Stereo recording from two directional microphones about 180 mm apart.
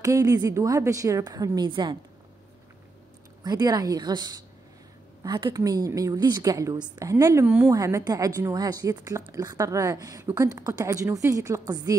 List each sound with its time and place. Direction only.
0.0 s a woman's voice: 20° right (ahead or behind)
3.4 s a woman's voice: 20° right (ahead or behind)
7.4 s speech: 10° right (ahead or behind)
7.7 s a woman's voice: 20° right (ahead or behind)